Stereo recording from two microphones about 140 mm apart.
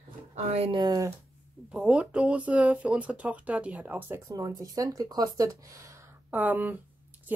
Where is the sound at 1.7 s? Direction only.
5° right (ahead or behind).